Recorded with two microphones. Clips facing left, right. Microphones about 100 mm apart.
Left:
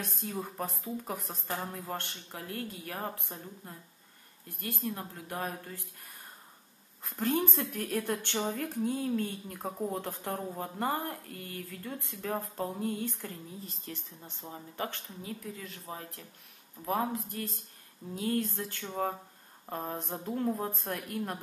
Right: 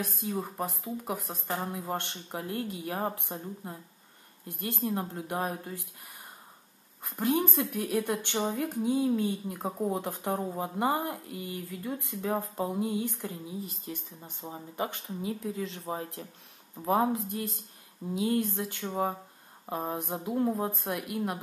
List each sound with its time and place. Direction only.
0.0 s a woman's voice: 5° right (ahead or behind); by 5.6 s 20° right (ahead or behind)
7.0 s a woman's voice: 10° right (ahead or behind)